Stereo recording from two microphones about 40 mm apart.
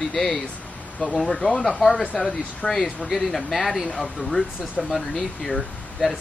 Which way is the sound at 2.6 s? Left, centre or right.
Left.